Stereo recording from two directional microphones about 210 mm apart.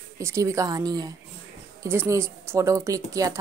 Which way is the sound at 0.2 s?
15° right (ahead or behind).